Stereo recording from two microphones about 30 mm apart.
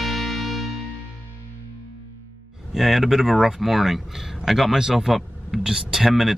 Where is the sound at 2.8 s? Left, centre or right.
Centre.